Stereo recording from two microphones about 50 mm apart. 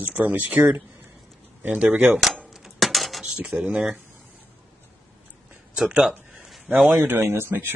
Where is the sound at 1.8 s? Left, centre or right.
Right.